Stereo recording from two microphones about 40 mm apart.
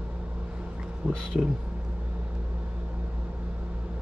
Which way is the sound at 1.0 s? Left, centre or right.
Right.